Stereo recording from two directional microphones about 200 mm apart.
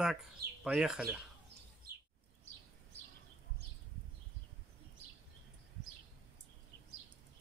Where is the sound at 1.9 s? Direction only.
50° right (ahead or behind).